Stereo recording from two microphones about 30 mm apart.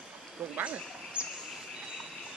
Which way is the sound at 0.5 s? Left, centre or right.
Right.